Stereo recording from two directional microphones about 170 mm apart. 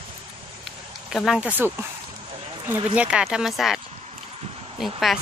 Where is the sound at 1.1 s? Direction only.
Centre (ahead or behind).